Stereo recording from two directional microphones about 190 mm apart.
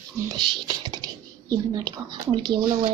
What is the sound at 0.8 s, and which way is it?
Computer keyboard, 20° right (ahead or behind).